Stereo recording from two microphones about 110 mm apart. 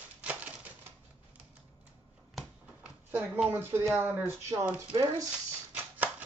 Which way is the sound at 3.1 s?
20° right (ahead or behind).